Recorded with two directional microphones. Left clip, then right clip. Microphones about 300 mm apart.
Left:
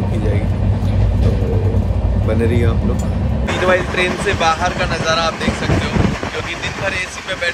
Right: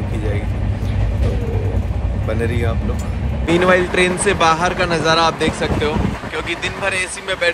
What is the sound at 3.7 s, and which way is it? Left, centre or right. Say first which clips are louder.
Speech: left 1 dB; right.